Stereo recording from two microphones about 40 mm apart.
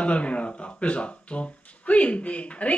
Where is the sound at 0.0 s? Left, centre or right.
Left.